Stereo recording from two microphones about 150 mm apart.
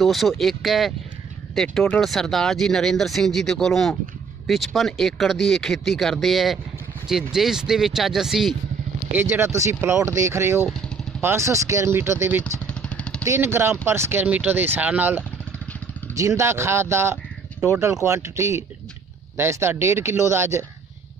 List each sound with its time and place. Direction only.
0.0 s speech: centre (ahead or behind)
9.1 s speech: 15° right (ahead or behind)
12.6 s vehicle: 5° left (ahead or behind)
13.2 s speech: 15° right (ahead or behind)